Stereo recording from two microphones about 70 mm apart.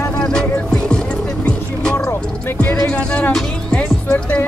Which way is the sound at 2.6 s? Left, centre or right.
Centre.